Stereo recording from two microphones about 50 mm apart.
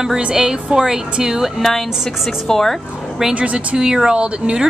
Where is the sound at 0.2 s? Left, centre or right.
Centre.